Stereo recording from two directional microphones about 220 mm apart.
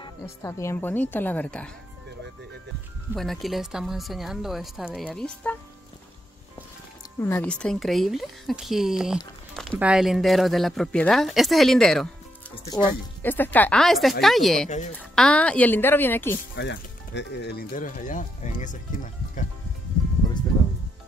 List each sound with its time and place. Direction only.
0.0 s speech: 15° left (ahead or behind)
3.2 s speech: centre (ahead or behind)
7.2 s speech: 10° left (ahead or behind)
7.6 s speech: centre (ahead or behind)
16.5 s speech: 55° left (ahead or behind); by 18.8 s 35° left (ahead or behind)